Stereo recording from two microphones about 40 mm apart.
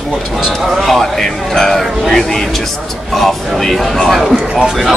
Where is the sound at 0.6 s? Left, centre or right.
Centre.